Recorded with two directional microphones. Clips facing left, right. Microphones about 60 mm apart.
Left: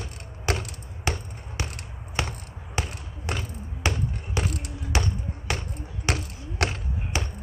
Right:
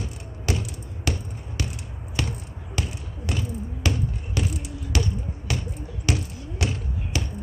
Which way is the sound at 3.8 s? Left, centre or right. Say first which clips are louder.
Even; left.